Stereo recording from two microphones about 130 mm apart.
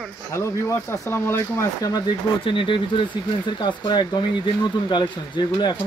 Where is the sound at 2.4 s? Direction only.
40° left (ahead or behind).